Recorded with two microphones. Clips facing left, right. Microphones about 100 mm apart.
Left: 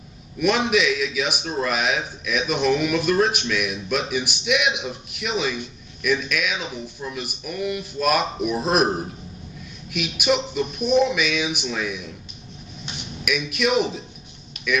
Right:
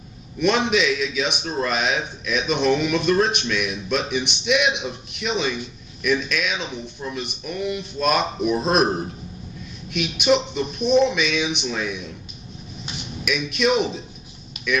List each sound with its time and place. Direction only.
0.4 s speech: 5° left (ahead or behind)
13.2 s speech: 5° left (ahead or behind)
14.5 s a sound: centre (ahead or behind)